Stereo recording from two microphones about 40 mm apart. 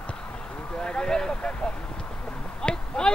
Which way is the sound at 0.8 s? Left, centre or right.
Left.